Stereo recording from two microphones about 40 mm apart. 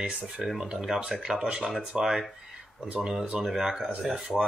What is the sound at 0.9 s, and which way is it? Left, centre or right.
Speech, centre.